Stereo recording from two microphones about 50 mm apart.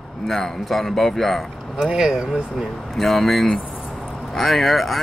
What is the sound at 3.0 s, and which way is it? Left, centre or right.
A man's voice, centre.